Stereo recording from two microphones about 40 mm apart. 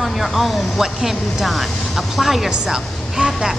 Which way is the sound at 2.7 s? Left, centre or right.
Centre.